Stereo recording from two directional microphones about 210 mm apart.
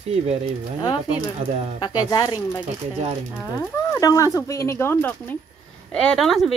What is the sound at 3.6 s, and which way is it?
Speech, 15° left (ahead or behind).